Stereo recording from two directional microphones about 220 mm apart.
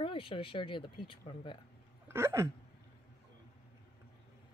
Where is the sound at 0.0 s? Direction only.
25° left (ahead or behind).